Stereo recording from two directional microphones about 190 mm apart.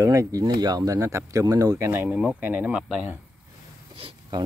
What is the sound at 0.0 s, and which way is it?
Speech, 15° right (ahead or behind).